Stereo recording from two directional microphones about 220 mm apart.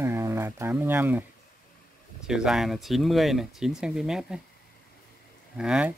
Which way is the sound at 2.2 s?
Centre (ahead or behind).